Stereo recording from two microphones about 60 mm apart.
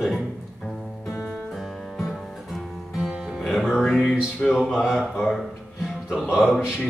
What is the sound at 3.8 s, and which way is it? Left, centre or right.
Speech, centre.